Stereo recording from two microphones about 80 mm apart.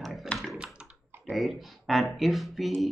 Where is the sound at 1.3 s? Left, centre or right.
Centre.